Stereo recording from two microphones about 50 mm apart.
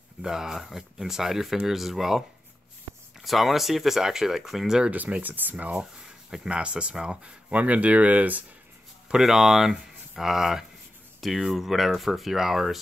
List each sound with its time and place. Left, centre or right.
0.2 s speech: centre
4.9 s speech: right
6.3 s speech: centre
9.1 s speech: centre